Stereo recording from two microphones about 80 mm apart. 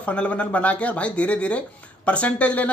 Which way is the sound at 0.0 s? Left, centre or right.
Centre.